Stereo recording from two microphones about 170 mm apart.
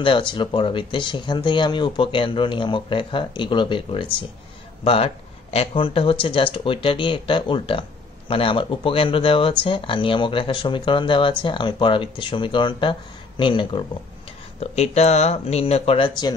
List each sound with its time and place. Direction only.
0.0 s speech: 30° left (ahead or behind)